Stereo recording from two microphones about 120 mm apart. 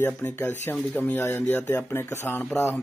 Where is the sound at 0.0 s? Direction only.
15° left (ahead or behind).